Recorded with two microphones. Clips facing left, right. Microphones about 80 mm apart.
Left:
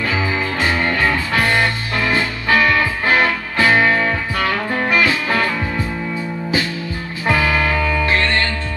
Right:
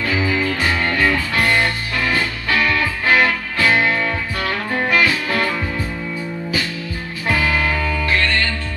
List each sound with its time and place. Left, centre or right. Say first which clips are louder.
0.0 s music: right 1 dB; left
7.2 s music: left 2 dB; left